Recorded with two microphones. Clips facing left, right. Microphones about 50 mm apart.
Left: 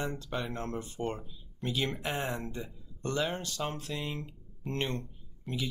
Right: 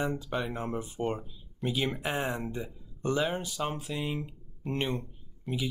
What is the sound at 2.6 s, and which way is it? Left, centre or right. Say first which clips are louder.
Speech: right 5 dB; centre.